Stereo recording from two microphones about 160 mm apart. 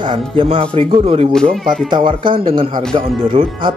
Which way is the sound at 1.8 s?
30° right (ahead or behind).